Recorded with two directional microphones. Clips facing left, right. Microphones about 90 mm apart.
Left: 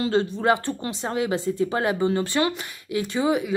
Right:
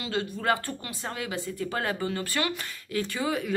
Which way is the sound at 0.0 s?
30° left (ahead or behind).